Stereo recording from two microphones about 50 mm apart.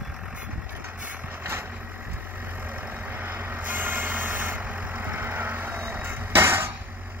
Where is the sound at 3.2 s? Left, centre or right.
Right.